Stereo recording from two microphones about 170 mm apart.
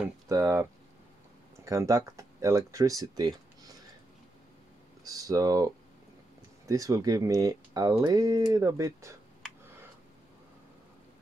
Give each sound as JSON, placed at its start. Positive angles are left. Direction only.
{"t": 0.0, "sound": "speech", "side_deg": -20}
{"t": 5.0, "sound": "speech", "side_deg": -20}